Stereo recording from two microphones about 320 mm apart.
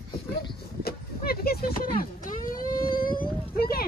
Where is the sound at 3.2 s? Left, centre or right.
Left.